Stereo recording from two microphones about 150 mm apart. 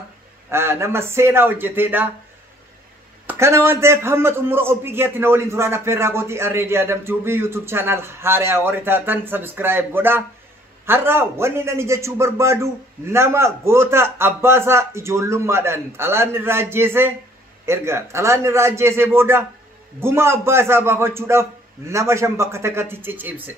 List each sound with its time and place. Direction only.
0.5 s a man's voice: 15° right (ahead or behind)
3.3 s a man's voice: 20° right (ahead or behind)